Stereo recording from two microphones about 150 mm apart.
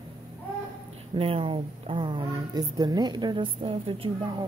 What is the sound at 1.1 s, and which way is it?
A woman's voice, 40° right (ahead or behind).